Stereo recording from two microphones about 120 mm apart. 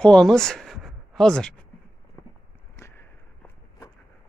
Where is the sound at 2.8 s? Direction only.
20° left (ahead or behind).